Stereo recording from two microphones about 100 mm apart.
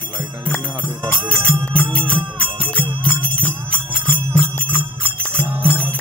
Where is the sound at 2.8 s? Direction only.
60° right (ahead or behind).